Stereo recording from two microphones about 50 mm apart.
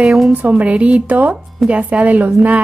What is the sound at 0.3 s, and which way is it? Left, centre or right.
Speech, right.